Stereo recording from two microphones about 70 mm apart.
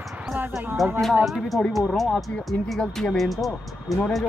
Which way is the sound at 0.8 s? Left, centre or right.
Centre.